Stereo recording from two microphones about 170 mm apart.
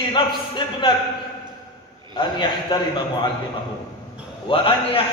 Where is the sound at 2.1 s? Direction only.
30° left (ahead or behind).